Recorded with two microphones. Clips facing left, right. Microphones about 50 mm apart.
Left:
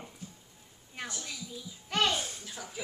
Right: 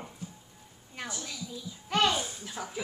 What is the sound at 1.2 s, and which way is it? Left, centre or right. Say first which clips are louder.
Speech: right 2 dB; centre.